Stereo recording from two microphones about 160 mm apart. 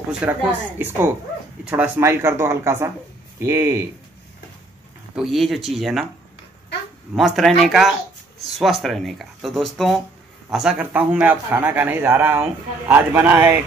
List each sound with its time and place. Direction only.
0.2 s a man's voice: 10° right (ahead or behind)
5.1 s speech: centre (ahead or behind)
7.2 s a man's voice: centre (ahead or behind)